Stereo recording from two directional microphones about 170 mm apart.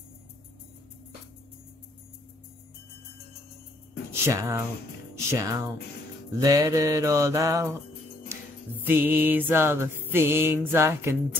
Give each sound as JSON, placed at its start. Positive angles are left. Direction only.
{"t": 4.2, "sound": "mantra", "side_deg": -20}
{"t": 8.8, "sound": "music", "side_deg": -10}